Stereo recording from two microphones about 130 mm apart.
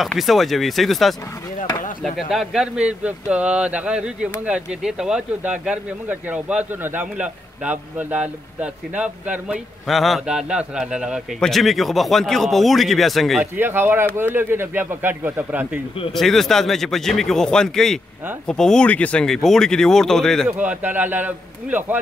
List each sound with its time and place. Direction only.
0.0 s speech: centre (ahead or behind)
13.4 s speech: 15° right (ahead or behind)
16.2 s speech: 5° left (ahead or behind)
20.4 s speech: 10° right (ahead or behind)